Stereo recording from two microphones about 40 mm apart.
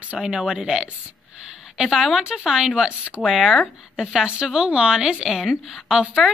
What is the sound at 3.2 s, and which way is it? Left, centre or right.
Speech, centre.